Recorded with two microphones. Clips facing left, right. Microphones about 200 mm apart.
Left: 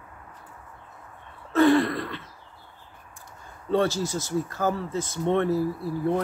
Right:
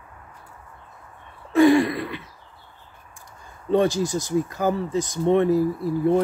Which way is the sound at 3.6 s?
15° right (ahead or behind).